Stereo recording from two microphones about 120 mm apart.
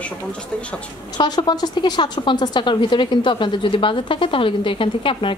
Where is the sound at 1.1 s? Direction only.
35° left (ahead or behind).